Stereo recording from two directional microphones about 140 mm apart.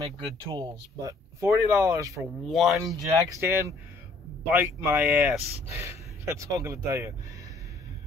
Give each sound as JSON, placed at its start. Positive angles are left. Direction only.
{"t": 0.0, "sound": "speech", "side_deg": -40}
{"t": 1.0, "sound": "speech", "side_deg": -20}
{"t": 2.5, "sound": "speech", "side_deg": 0}
{"t": 3.3, "sound": "speech", "side_deg": -20}